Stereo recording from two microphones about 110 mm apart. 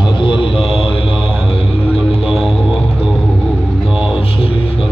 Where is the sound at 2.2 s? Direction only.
5° right (ahead or behind).